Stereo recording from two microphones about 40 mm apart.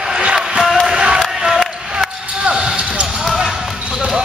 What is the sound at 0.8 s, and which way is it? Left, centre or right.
Music, right.